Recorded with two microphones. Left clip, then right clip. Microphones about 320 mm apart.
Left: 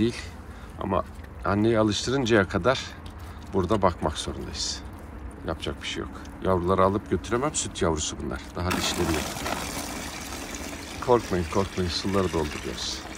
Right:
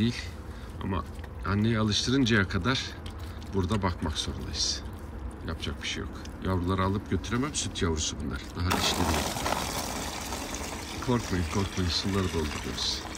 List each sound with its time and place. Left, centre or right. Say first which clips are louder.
0.7 s speech: left 8 dB; centre
8.6 s water: left 1 dB; right
11.4 s speech: left 5 dB; right
12.7 s speech: right 1 dB; centre